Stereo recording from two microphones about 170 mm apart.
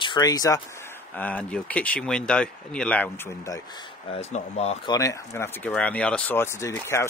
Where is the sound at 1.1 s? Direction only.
10° left (ahead or behind).